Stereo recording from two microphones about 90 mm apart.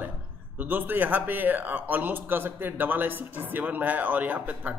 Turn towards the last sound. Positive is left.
turn(degrees=-15)  # may be behind; listen again after turning